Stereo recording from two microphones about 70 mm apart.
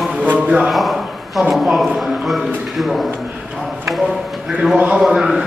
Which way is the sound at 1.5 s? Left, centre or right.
Centre.